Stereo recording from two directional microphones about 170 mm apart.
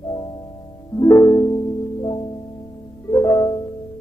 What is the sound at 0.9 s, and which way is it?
Music, 20° left (ahead or behind).